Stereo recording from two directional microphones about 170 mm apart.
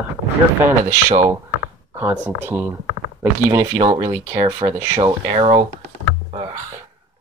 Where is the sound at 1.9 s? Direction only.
15° right (ahead or behind).